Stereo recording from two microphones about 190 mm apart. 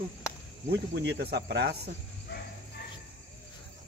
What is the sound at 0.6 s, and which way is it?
Speech, 60° right (ahead or behind).